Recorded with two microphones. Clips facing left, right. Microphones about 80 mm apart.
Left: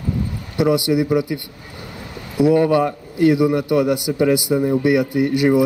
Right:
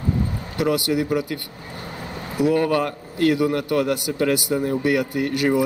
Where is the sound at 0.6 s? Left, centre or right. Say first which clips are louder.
Left 4 dB; centre.